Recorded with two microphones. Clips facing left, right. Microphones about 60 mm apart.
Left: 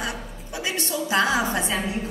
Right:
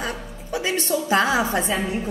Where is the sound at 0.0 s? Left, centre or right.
Right.